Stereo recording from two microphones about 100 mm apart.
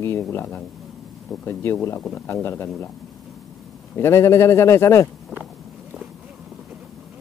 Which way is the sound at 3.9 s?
25° left (ahead or behind).